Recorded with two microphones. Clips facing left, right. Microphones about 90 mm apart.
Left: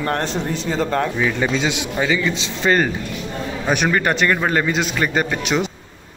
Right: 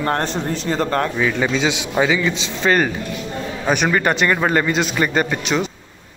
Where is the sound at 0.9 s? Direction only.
5° left (ahead or behind).